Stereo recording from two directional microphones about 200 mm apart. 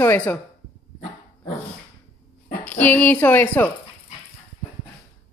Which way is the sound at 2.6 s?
10° left (ahead or behind).